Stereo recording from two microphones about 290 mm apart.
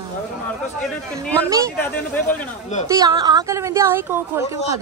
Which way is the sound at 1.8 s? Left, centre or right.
Centre.